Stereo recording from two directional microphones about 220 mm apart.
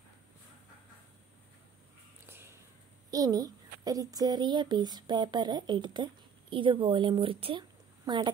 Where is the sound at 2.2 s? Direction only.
10° right (ahead or behind).